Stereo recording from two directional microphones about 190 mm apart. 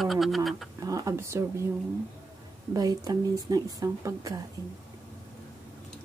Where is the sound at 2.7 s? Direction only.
20° right (ahead or behind).